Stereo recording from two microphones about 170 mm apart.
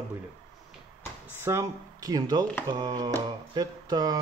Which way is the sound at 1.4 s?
20° right (ahead or behind).